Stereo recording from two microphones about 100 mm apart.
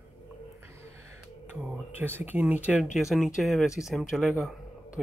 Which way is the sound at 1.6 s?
15° right (ahead or behind).